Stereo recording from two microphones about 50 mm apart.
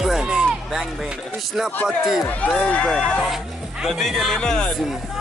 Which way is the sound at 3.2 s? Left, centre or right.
Centre.